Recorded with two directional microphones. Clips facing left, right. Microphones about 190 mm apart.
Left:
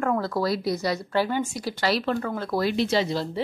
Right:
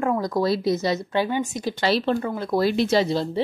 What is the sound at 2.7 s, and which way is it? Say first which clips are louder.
Speech: right 3 dB; 45° right (ahead or behind).